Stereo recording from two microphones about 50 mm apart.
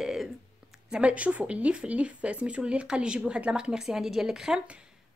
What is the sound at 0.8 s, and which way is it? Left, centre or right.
Speech, right.